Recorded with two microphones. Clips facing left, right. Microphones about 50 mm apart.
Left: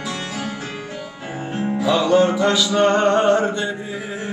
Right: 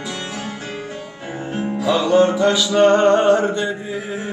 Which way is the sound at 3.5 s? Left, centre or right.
Centre.